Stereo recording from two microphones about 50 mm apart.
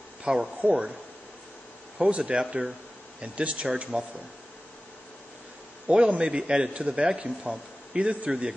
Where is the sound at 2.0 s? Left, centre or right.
Right.